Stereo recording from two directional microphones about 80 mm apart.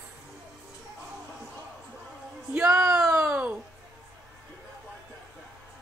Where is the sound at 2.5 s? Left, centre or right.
Centre.